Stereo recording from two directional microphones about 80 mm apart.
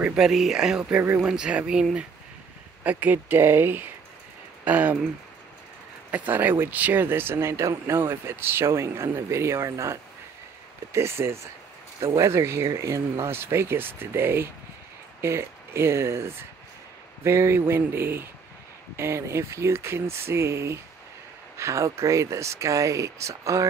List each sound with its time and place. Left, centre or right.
0.0 s speech: centre
0.8 s speech: right
1.2 s speech: centre
6.1 s speech: right